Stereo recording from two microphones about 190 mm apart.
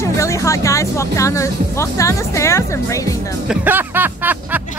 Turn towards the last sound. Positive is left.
turn(degrees=-10)  # may be behind; listen again after turning